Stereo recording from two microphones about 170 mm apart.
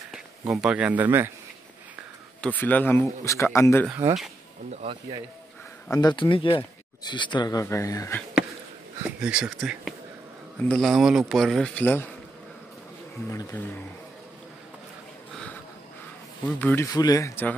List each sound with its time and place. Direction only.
0.1 s speech: 5° right (ahead or behind)
2.4 s speech: 10° left (ahead or behind)
4.8 s speech: 35° right (ahead or behind)
5.9 s speech: 25° left (ahead or behind)
9.2 s speech: 5° right (ahead or behind); by 12.1 s 10° left (ahead or behind)
13.3 s speech: 15° left (ahead or behind)
16.4 s speech: 10° left (ahead or behind)